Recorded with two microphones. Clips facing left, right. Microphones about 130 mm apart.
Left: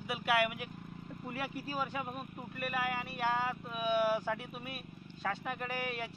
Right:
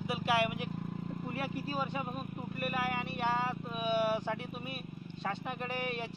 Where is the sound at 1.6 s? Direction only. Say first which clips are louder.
Even; 25° right (ahead or behind).